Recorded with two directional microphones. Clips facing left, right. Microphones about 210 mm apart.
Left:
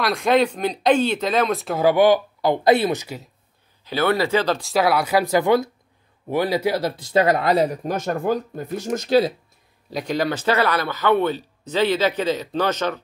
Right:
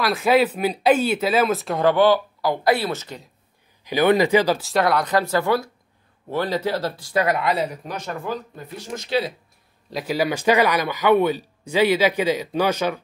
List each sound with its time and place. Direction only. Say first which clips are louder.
0.0 s speech: even; 5° right (ahead or behind); by 3.2 s 15° left (ahead or behind)
3.8 s speech: right 3 dB; 15° right (ahead or behind)
4.6 s speech: left 1 dB; centre (ahead or behind); by 7.3 s 25° left (ahead or behind)
7.3 s speech: left 4 dB; 40° left (ahead or behind)
9.8 s speech: even; 5° right (ahead or behind)